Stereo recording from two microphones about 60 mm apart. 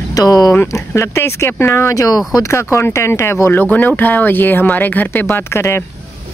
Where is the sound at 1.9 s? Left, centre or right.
Left.